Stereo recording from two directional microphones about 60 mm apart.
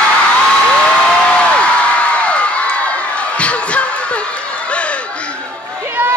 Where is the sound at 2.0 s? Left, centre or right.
Left.